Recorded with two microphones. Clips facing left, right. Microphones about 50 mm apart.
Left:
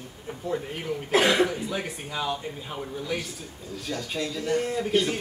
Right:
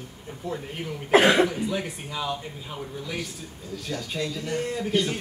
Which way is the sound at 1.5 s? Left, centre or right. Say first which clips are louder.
Right 2 dB; centre.